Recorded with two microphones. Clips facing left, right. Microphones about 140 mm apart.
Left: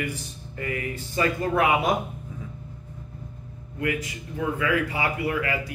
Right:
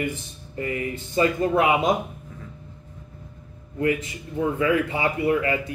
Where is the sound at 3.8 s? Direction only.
30° right (ahead or behind).